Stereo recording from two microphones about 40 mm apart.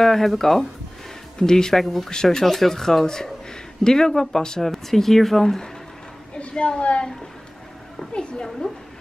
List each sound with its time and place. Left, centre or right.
0.0 s speech: centre
6.3 s a woman's voice: left
8.1 s a woman's voice: left